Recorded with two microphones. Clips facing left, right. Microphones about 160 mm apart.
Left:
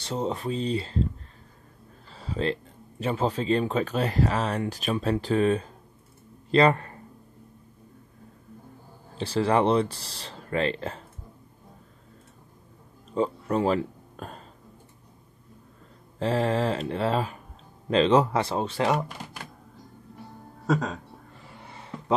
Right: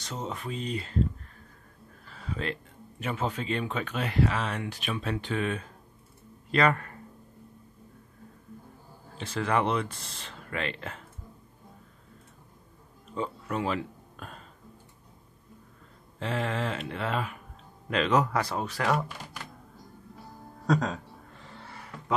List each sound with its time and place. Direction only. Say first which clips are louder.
0.0 s speech: left 7 dB; 30° left (ahead or behind)
2.0 s speech: left 6 dB; 30° left (ahead or behind)
9.1 s speech: left 5 dB; 35° left (ahead or behind)
13.1 s speech: left 7 dB; 35° left (ahead or behind)
16.2 s speech: left 6 dB; 35° left (ahead or behind)
20.6 s a sound: left 1 dB; 5° left (ahead or behind)
21.5 s a sound: left 4 dB; 20° left (ahead or behind)